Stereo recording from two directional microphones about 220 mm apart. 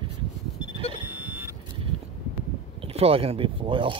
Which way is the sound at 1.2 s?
10° right (ahead or behind).